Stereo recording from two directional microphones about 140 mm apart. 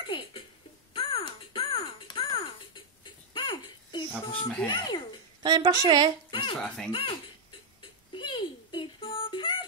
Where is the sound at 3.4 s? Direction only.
35° left (ahead or behind).